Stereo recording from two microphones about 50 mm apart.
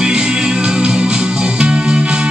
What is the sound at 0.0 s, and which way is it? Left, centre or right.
Music, centre.